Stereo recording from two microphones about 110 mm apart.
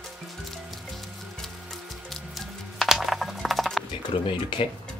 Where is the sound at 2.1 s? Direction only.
Centre (ahead or behind).